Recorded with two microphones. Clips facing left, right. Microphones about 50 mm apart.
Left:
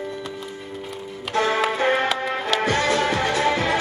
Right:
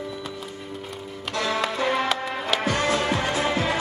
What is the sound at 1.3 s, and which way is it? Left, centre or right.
Music, left.